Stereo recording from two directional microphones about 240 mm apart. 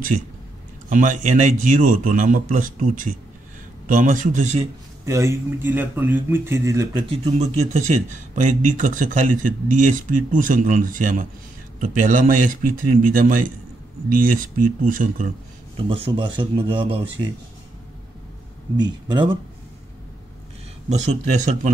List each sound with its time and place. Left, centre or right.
0.8 s speech: right
5.0 s speech: centre; by 15.3 s right
15.9 s speech: centre
18.8 s speech: centre
20.9 s speech: right